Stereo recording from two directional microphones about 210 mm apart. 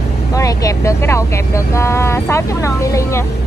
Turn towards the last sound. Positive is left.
turn(degrees=15)  # may be behind; listen again after turning